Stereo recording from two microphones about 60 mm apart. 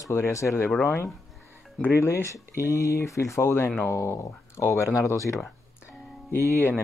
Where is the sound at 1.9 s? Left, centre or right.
Left.